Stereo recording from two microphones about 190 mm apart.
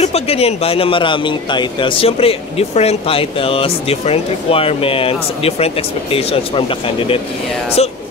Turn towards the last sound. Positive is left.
turn(degrees=35)  # may be behind; listen again after turning